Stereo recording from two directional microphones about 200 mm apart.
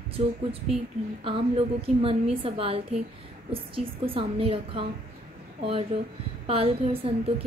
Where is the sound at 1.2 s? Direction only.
25° right (ahead or behind).